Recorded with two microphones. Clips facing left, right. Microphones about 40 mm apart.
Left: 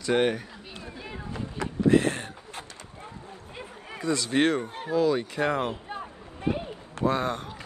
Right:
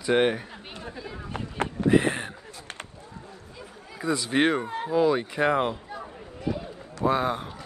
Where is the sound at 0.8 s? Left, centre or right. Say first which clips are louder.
Right 1 dB; right.